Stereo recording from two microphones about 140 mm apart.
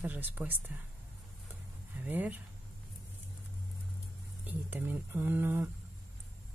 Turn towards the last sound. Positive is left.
turn(degrees=-15)  # may be behind; listen again after turning